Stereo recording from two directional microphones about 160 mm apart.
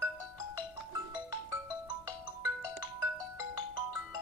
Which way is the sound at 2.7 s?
10° right (ahead or behind).